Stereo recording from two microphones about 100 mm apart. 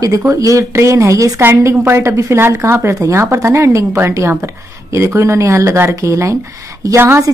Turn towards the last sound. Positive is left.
turn(degrees=-25)  # may be behind; listen again after turning